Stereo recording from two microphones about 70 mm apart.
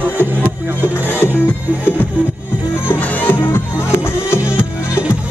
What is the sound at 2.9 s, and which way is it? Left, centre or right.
Music, left.